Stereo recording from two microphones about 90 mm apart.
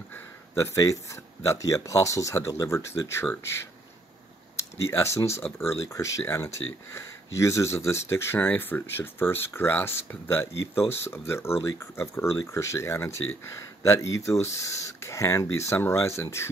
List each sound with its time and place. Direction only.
0.1 s speech: 35° left (ahead or behind)
4.9 s speech: 30° left (ahead or behind)